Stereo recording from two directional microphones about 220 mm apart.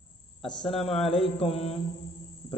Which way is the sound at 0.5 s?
Centre (ahead or behind).